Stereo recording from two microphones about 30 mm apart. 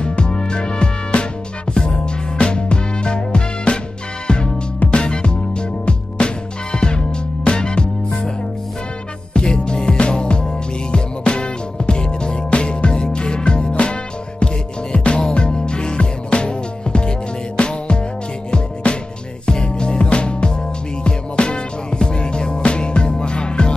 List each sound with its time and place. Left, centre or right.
0.2 s music: left
9.3 s music: left
9.8 s music: left